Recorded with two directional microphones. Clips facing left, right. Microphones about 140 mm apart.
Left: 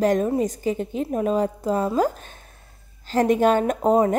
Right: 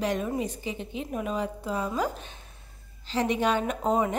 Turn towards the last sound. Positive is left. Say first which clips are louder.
# left 7 dB
turn(degrees=40)  # may be behind; listen again after turning